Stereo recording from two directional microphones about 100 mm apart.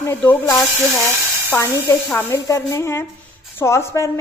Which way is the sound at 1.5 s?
25° left (ahead or behind).